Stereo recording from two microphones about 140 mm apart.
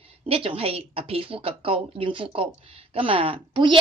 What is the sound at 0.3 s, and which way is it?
A woman's voice, 40° right (ahead or behind).